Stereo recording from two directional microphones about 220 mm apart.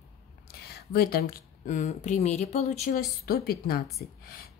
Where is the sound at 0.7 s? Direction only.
45° left (ahead or behind).